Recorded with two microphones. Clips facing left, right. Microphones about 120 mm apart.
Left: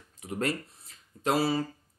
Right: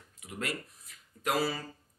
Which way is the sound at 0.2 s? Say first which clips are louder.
Left 7 dB; 35° left (ahead or behind).